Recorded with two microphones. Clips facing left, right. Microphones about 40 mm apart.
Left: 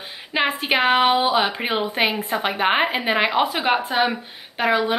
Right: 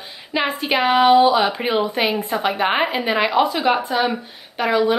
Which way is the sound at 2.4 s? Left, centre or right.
Centre.